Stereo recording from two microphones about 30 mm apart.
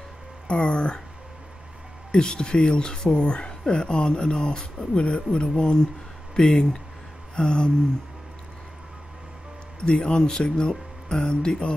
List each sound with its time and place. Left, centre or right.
0.5 s a sound: left
2.1 s speech: left
9.8 s speech: left
10.0 s speech: left